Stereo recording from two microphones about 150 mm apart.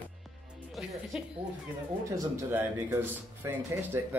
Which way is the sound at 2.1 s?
15° right (ahead or behind).